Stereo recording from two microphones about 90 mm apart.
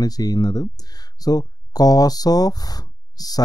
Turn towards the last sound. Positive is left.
turn(degrees=45)  # may be behind; listen again after turning